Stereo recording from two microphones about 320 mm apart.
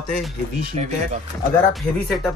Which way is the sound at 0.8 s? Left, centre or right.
Centre.